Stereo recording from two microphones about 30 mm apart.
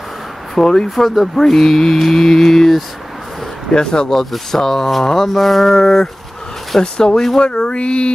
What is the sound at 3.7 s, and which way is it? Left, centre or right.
Speech, left.